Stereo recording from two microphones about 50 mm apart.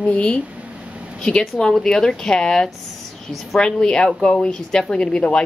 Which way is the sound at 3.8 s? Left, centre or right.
Centre.